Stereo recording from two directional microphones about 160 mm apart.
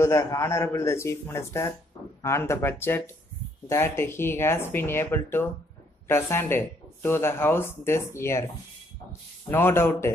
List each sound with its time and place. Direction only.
0.0 s speech: 20° left (ahead or behind)
9.5 s speech: 15° left (ahead or behind)